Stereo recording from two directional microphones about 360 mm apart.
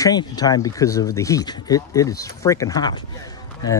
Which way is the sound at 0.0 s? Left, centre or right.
Centre.